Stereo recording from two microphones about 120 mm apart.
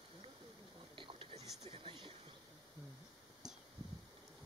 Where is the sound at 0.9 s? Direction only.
45° right (ahead or behind).